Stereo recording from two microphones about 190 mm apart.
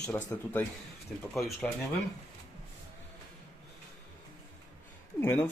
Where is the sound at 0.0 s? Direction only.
10° left (ahead or behind).